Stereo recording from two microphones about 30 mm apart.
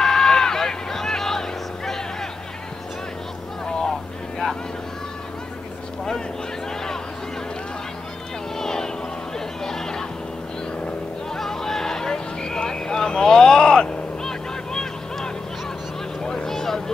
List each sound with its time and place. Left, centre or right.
0.0 s vehicle: centre
8.5 s vehicle: centre
9.6 s a sound: centre
11.3 s vehicle: centre
16.2 s vehicle: left
16.4 s vehicle: centre